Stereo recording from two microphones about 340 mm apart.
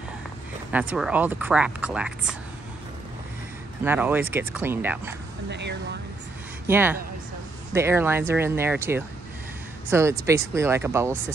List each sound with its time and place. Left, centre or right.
0.7 s speech: centre
3.8 s speech: centre
5.5 s speech: right
6.7 s speech: centre